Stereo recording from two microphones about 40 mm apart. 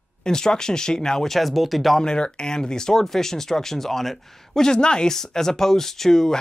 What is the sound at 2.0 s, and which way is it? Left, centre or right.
Speech, left.